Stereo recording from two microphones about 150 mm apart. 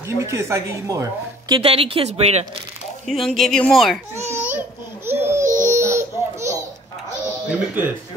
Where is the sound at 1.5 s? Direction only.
35° right (ahead or behind).